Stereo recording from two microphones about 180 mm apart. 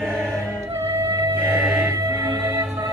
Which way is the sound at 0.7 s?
15° right (ahead or behind).